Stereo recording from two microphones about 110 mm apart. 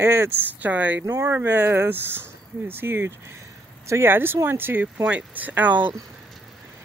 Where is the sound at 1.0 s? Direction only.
30° right (ahead or behind).